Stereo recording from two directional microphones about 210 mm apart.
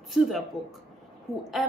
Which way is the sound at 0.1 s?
Centre (ahead or behind).